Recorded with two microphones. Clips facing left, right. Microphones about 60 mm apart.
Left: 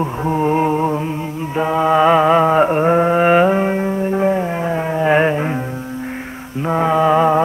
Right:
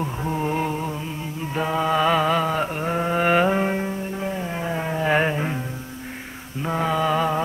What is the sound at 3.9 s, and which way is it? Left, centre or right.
Music, left.